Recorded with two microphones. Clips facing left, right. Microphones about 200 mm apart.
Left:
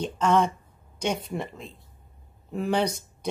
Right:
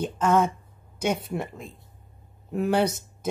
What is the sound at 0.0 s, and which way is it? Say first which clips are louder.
Speech: right 1 dB; 5° right (ahead or behind).